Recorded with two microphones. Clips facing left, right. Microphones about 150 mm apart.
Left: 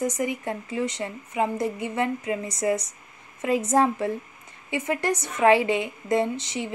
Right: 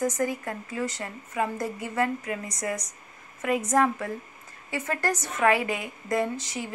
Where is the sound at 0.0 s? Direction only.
20° left (ahead or behind).